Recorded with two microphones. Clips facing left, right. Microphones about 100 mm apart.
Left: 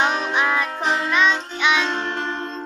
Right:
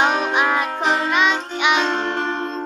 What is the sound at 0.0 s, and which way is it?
Music, 15° right (ahead or behind).